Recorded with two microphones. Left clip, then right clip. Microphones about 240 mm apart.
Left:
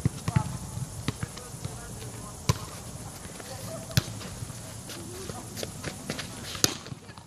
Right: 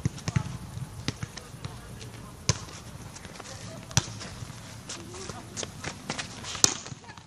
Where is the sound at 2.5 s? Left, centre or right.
Left.